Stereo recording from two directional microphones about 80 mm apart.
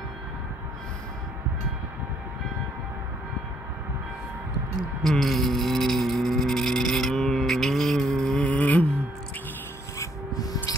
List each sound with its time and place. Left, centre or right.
5.0 s music: centre
8.4 s music: centre
10.3 s music: left